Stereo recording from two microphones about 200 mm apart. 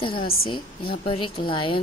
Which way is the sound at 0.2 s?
50° left (ahead or behind).